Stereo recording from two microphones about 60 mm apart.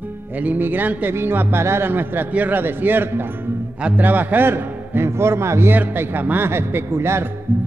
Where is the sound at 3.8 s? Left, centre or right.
Right.